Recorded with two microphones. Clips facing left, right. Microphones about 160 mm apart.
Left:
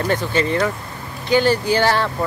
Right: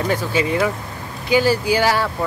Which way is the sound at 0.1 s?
10° right (ahead or behind).